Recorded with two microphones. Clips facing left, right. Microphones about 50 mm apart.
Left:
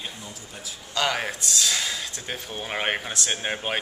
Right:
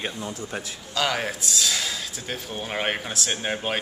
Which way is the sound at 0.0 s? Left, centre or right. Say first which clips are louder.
Right 7 dB; right.